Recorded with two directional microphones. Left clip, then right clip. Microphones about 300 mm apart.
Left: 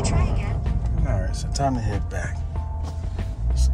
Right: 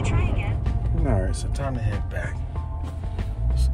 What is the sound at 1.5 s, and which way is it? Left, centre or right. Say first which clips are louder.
Speech: left 10 dB; centre.